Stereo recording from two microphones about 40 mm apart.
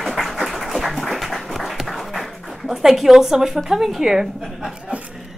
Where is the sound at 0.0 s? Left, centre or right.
Centre.